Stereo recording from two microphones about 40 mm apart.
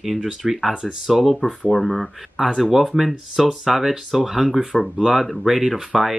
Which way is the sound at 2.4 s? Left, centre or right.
Right.